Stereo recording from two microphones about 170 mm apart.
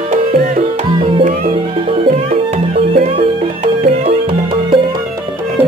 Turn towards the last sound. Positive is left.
turn(degrees=-30)  # may be behind; listen again after turning